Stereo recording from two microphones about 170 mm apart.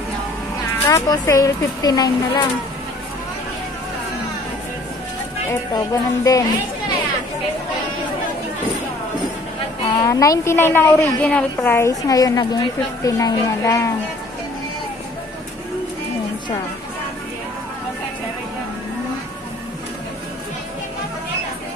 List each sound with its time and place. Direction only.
0.8 s a woman's voice: 20° left (ahead or behind)
5.5 s a woman's voice: 20° left (ahead or behind)
9.9 s a woman's voice: 20° left (ahead or behind)